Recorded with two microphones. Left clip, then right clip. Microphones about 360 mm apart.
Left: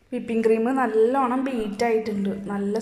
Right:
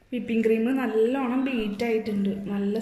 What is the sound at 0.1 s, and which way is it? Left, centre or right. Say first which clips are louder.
A woman's voice: left 3 dB; left.